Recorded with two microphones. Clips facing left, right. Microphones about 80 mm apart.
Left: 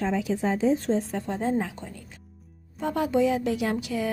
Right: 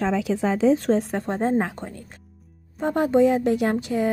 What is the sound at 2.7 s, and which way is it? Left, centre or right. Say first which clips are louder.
A woman's voice: right 5 dB; right.